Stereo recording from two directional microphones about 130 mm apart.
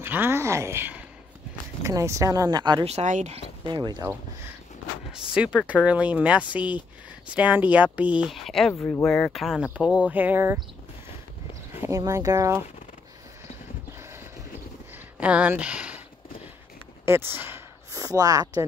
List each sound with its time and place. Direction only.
0.0 s speech: 15° right (ahead or behind); by 2.9 s 35° right (ahead or behind)
2.9 s speech: 65° right (ahead or behind)
3.3 s speech: 35° right (ahead or behind)
4.1 s speech: 20° right (ahead or behind)
5.1 s speech: 5° right (ahead or behind)
8.7 s speech: 20° left (ahead or behind)
9.0 s speech: 5° left (ahead or behind); by 10.6 s 15° right (ahead or behind)
11.7 s a sound: 15° right (ahead or behind)
12.0 s speech: 25° right (ahead or behind)
15.1 s speech: 10° right (ahead or behind)
17.0 s speech: 20° right (ahead or behind)